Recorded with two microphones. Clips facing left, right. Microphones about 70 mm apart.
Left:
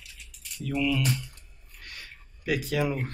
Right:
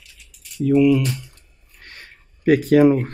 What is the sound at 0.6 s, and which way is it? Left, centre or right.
Speech, right.